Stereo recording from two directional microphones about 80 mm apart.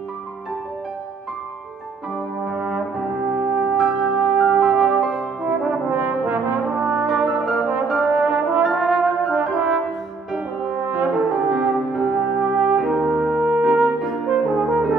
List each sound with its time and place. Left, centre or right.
2.4 s brass instrument: centre
3.3 s music: centre
5.9 s brass instrument: right
7.9 s brass instrument: centre
10.3 s french horn: centre